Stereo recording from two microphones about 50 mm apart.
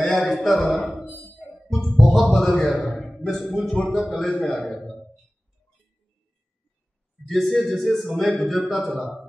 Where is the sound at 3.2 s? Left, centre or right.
Centre.